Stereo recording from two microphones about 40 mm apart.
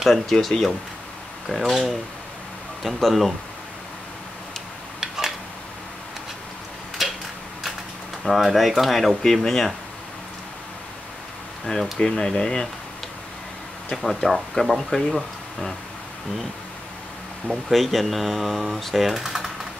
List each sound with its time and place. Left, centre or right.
0.0 s speech: centre
3.0 s speech: centre
7.0 s tick-tock: centre
8.2 s speech: centre
11.6 s speech: centre
12.0 s speech: centre
14.0 s speech: centre
17.6 s speech: centre